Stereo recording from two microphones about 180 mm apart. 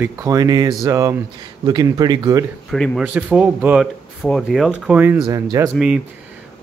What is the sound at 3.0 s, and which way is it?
Speech, 10° right (ahead or behind).